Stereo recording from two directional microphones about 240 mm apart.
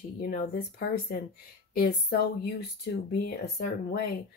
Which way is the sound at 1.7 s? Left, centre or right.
Left.